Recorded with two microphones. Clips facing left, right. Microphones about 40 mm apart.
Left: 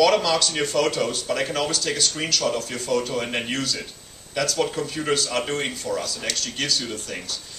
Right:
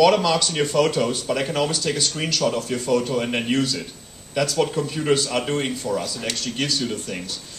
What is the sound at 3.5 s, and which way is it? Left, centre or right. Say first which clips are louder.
Speech: right 5 dB; centre.